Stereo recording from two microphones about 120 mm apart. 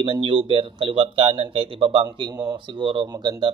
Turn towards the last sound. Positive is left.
turn(degrees=-35)  # may be behind; listen again after turning